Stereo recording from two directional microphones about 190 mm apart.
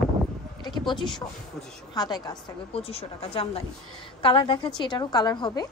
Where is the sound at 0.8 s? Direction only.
25° left (ahead or behind).